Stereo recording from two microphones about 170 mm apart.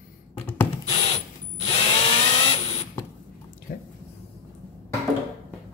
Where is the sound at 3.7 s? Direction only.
60° left (ahead or behind).